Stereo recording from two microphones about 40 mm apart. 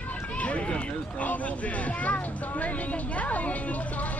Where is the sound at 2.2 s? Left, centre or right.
Left.